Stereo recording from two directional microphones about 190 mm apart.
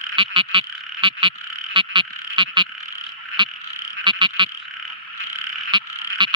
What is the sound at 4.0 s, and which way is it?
Frog, 25° right (ahead or behind).